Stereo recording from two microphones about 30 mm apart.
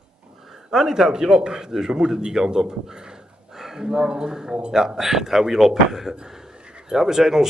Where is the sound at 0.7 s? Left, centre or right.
Centre.